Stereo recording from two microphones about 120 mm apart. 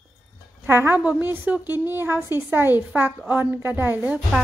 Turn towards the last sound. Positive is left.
turn(degrees=-15)  # may be behind; listen again after turning